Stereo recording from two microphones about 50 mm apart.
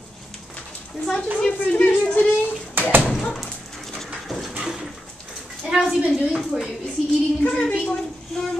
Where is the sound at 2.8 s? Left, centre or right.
Right.